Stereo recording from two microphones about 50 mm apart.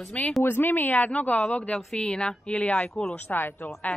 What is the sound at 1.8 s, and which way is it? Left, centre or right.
Speech, centre.